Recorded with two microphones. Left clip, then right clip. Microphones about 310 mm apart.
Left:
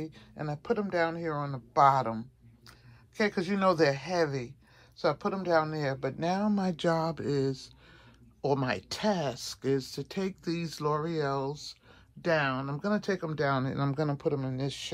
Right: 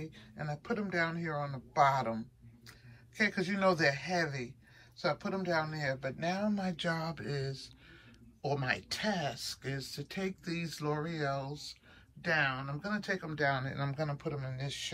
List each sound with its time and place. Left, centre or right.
0.0 s speech: centre